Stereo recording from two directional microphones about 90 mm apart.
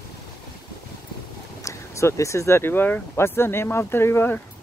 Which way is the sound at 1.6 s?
35° left (ahead or behind).